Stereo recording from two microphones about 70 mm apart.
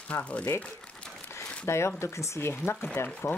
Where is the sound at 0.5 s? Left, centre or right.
Centre.